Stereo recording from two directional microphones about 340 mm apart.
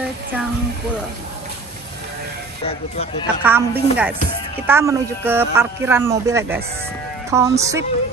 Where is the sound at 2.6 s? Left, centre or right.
Centre.